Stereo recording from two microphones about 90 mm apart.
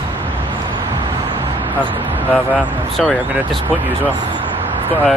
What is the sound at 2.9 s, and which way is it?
Speech, 5° left (ahead or behind).